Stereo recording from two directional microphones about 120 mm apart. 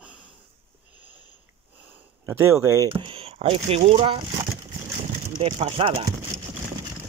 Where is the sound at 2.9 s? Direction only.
45° right (ahead or behind).